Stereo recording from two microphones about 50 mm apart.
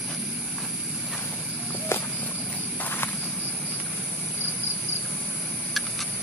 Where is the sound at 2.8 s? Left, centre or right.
Left.